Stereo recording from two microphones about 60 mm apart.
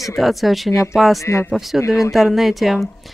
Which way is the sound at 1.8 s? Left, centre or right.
Left.